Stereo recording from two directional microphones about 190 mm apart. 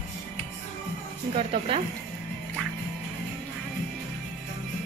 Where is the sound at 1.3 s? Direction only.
30° right (ahead or behind).